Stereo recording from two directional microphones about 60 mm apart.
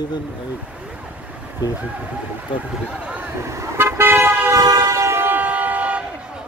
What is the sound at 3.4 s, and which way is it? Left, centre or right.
Vehicle, right.